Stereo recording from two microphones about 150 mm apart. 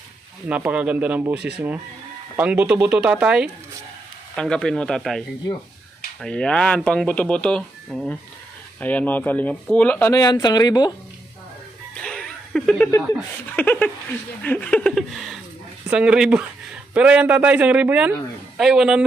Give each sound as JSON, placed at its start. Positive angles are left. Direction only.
{"t": 0.5, "sound": "a man's voice", "side_deg": -10}
{"t": 4.4, "sound": "a sound", "side_deg": 5}
{"t": 6.2, "sound": "speech", "side_deg": 5}
{"t": 10.1, "sound": "speech", "side_deg": 25}
{"t": 12.0, "sound": "music", "side_deg": 5}
{"t": 13.1, "sound": "speech", "side_deg": 10}
{"t": 14.4, "sound": "a sound", "side_deg": 10}
{"t": 16.9, "sound": "a man's voice", "side_deg": -10}
{"t": 18.6, "sound": "a sound", "side_deg": -5}